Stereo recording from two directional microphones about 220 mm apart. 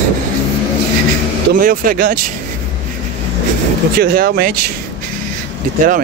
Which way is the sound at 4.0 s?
40° right (ahead or behind).